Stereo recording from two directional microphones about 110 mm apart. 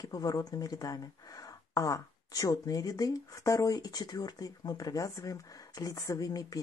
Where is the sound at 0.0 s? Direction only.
35° left (ahead or behind).